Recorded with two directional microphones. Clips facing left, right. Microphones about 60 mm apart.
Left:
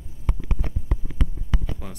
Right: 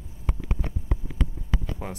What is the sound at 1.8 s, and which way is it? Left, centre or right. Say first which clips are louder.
Speech: right 3 dB; right.